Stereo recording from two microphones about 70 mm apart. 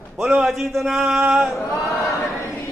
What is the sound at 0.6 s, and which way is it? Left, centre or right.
A man's voice, centre.